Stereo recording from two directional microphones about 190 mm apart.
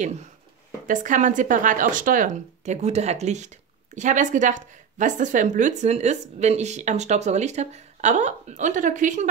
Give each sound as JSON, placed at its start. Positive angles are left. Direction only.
{"t": 0.8, "sound": "speech", "side_deg": -45}